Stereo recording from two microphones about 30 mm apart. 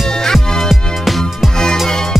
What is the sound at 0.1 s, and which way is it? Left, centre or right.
Music, centre.